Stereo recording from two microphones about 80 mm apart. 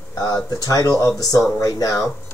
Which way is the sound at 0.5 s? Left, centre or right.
Left.